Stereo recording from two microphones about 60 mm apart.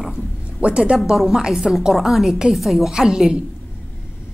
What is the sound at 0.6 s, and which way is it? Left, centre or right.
Speech, centre.